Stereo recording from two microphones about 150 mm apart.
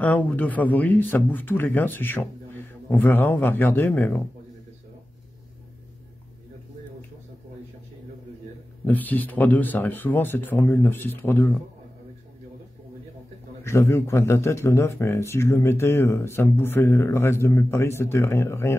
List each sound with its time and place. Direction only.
0.0 s speech: 10° left (ahead or behind)
8.8 s speech: 10° left (ahead or behind)
13.7 s speech: 20° left (ahead or behind)